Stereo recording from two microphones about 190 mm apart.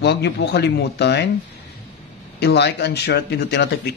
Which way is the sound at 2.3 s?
60° left (ahead or behind).